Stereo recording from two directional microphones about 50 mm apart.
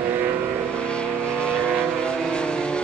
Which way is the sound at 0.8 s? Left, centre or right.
Left.